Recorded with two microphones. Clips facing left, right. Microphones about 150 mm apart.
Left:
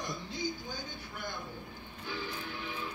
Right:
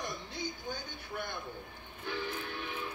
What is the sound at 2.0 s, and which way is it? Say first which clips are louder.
Music: right 2 dB; 60° right (ahead or behind).